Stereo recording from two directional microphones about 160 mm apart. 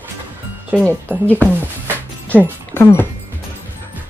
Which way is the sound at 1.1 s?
10° right (ahead or behind).